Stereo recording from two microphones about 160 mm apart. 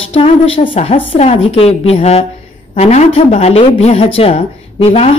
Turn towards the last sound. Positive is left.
turn(degrees=40)  # may be behind; listen again after turning